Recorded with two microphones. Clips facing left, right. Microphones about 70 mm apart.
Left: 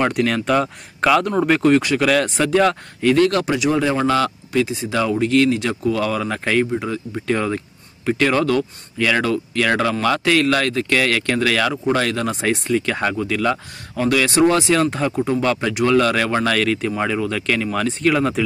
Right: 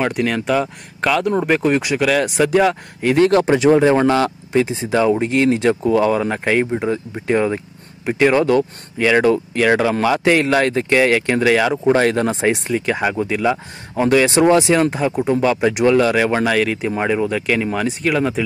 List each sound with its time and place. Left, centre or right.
0.0 s speech: centre
1.6 s speech: centre